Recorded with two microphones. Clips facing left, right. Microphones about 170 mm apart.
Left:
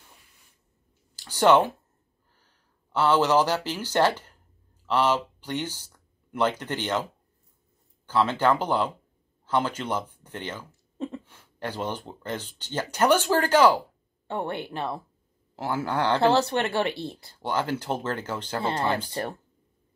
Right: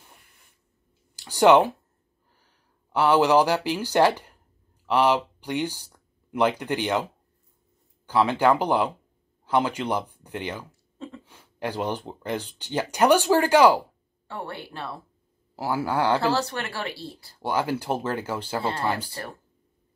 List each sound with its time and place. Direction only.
1.1 s speech: 15° right (ahead or behind)
8.1 s speech: 15° right (ahead or behind)
14.2 s speech: 20° left (ahead or behind)
15.5 s speech: 10° right (ahead or behind)
16.2 s speech: 25° left (ahead or behind)
17.4 s speech: 10° right (ahead or behind)